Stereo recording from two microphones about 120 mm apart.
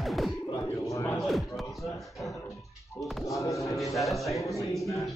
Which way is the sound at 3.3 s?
25° left (ahead or behind).